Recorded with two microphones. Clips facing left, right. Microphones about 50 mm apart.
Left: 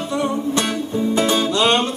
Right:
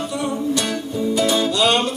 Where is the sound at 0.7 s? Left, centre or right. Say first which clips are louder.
Left 2 dB; left.